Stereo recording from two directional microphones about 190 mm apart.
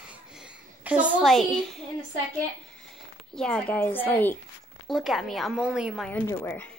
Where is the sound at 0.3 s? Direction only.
5° right (ahead or behind).